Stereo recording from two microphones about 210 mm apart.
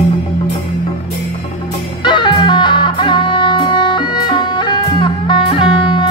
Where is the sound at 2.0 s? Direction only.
20° left (ahead or behind).